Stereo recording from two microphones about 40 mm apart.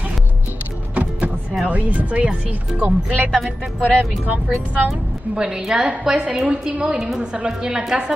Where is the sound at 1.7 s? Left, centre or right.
Right.